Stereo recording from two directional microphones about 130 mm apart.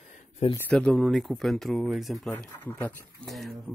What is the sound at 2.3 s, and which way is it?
Speech, 15° left (ahead or behind).